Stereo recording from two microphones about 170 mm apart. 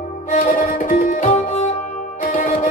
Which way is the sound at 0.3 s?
50° left (ahead or behind).